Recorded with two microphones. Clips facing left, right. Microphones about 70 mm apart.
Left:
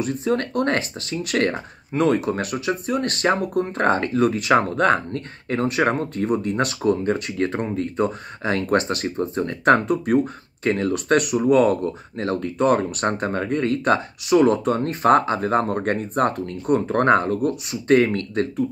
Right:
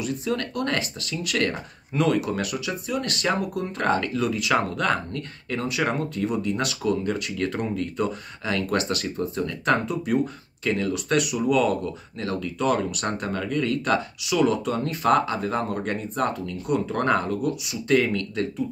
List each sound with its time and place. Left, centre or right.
0.0 s speech: left